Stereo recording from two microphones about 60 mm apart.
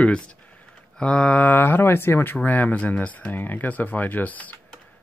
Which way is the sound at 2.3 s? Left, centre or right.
Left.